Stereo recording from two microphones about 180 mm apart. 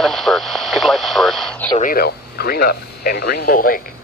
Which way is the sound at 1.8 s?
55° left (ahead or behind).